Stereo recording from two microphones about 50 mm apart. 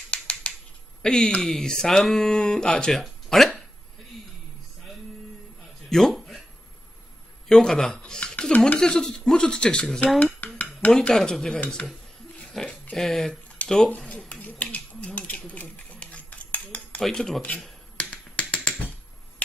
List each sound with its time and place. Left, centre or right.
0.1 s a sound: left
1.0 s speech: centre
3.0 s a sound: centre
5.9 s a sound: centre
7.4 s a man's voice: centre
7.9 s speech: left
10.1 s dishes: left
10.8 s speech: left
11.1 s speech: centre
13.8 s speech: left
14.3 s scissors: left
15.1 s cutlery: left
17.0 s speech: centre
17.4 s finger snapping: left